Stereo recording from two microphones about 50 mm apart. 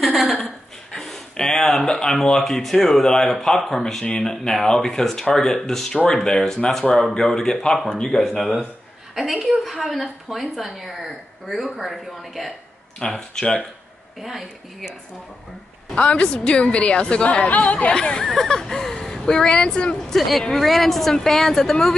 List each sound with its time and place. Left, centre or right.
0.0 s a sound: centre
0.9 s a woman's voice: centre
13.0 s speech: centre
14.2 s a woman's voice: centre
15.9 s a woman's voice: left
17.9 s speech: centre
20.1 s a woman's voice: centre